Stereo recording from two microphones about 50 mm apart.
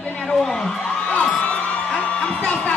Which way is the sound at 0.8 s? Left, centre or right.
Left.